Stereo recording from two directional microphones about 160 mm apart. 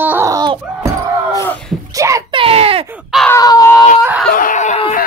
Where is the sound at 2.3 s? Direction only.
35° right (ahead or behind).